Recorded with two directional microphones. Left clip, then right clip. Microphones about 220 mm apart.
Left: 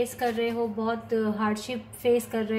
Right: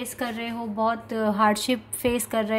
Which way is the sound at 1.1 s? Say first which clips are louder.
Right 5 dB; 50° right (ahead or behind).